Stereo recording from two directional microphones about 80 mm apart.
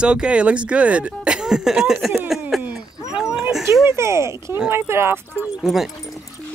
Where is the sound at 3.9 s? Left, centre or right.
Right.